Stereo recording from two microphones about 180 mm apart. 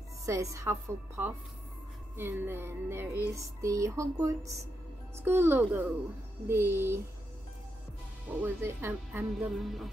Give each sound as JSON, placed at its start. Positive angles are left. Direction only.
{"t": 0.2, "sound": "a woman's voice", "side_deg": -15}
{"t": 8.4, "sound": "a woman's voice", "side_deg": -10}
{"t": 9.5, "sound": "music", "side_deg": 0}